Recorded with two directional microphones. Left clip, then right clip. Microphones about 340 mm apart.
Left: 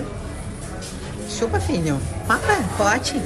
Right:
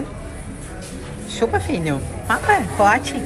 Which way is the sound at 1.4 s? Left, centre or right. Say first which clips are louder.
Right 3 dB; centre.